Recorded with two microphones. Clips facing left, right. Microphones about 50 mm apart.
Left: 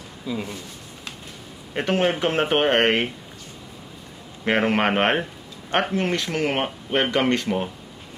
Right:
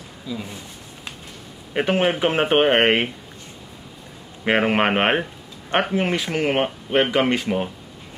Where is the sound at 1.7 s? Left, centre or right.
Centre.